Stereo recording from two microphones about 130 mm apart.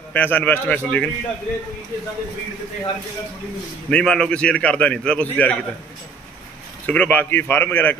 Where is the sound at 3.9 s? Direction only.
5° left (ahead or behind).